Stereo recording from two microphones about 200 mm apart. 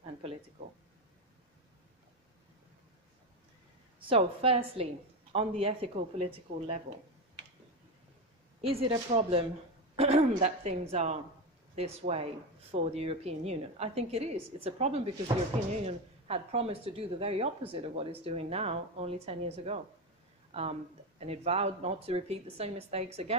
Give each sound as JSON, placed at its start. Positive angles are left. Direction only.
{"t": 4.0, "sound": "a woman's voice", "side_deg": -30}
{"t": 8.6, "sound": "a woman's voice", "side_deg": -30}
{"t": 21.2, "sound": "speech", "side_deg": -30}